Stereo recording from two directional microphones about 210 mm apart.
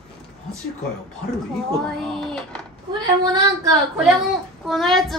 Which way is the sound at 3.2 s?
20° right (ahead or behind).